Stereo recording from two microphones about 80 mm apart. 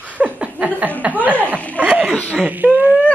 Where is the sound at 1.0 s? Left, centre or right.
Right.